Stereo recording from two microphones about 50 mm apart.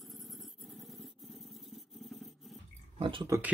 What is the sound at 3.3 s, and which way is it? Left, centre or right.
Speech, right.